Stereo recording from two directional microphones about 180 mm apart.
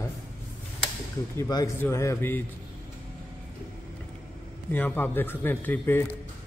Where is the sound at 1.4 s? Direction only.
20° left (ahead or behind).